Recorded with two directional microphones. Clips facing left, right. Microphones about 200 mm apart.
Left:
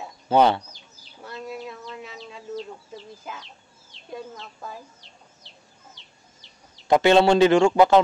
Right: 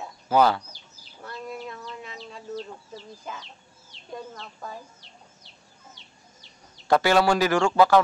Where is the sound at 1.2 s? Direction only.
5° left (ahead or behind).